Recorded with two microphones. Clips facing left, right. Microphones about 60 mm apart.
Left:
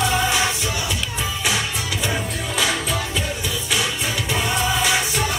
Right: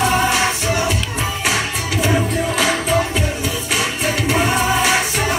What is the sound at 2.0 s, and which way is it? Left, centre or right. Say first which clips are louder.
Music: right 10 dB; right.